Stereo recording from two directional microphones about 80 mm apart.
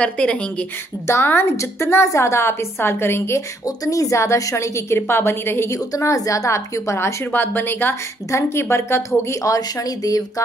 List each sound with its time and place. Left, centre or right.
0.0 s speech: centre
1.0 s a woman's voice: left
3.6 s a woman's voice: left
5.8 s a woman's voice: left
7.3 s a woman's voice: left
8.3 s a woman's voice: left